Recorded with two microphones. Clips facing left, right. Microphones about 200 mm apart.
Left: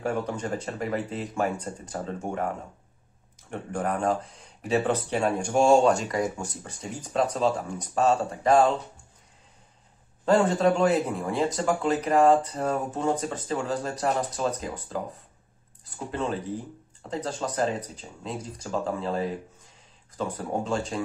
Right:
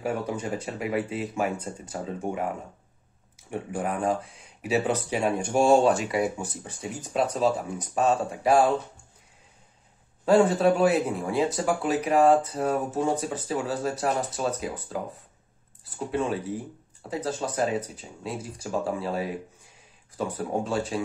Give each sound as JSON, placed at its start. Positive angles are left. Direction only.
{"t": 0.0, "sound": "speech", "side_deg": -5}
{"t": 10.2, "sound": "speech", "side_deg": -5}
{"t": 16.1, "sound": "speech", "side_deg": -5}